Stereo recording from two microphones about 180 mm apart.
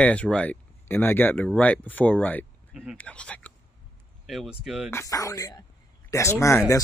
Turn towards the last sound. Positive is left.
turn(degrees=15)  # may be behind; listen again after turning